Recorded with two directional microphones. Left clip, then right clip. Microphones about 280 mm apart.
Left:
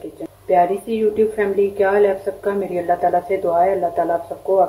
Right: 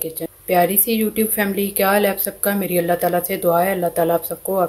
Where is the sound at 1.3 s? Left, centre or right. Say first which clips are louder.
Left 3 dB; right.